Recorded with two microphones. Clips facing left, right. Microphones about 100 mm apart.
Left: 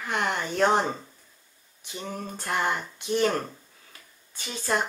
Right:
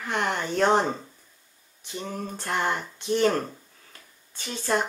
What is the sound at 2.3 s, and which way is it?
Speech, 10° left (ahead or behind).